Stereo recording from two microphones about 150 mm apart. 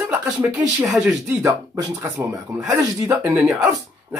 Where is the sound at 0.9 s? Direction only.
5° right (ahead or behind).